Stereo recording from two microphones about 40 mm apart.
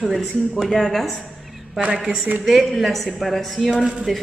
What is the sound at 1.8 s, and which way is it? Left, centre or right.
Speech, right.